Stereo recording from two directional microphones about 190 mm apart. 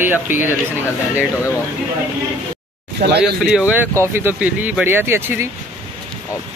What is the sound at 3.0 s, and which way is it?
Speech, 55° right (ahead or behind).